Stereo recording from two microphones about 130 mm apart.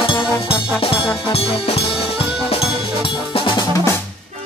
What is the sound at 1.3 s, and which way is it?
Music, 50° left (ahead or behind).